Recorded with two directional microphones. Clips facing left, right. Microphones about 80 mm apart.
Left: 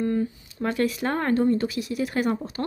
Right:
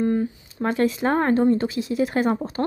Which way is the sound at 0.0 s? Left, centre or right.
Right.